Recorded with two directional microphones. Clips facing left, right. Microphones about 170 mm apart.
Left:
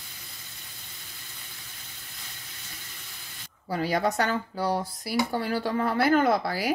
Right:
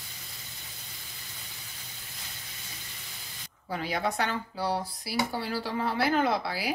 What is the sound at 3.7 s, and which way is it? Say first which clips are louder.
Speech: left 5 dB; 40° left (ahead or behind).